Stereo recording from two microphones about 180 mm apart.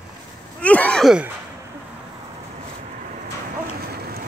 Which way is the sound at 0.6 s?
10° left (ahead or behind).